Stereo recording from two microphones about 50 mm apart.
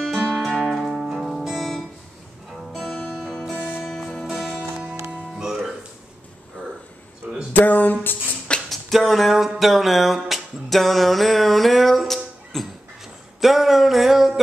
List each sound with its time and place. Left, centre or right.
0.2 s music: centre
1.1 s music: centre
3.1 s music: centre
4.6 s music: right
5.5 s music: centre
7.5 s a sound: left
8.6 s a sound: centre
9.6 s music: centre